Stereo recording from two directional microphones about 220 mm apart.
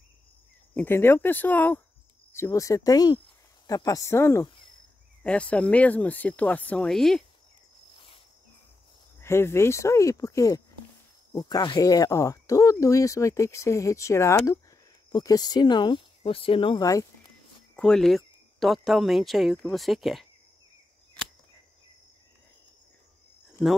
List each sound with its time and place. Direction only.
0.7 s speech: 10° left (ahead or behind)
9.2 s speech: 10° left (ahead or behind)
17.7 s speech: centre (ahead or behind)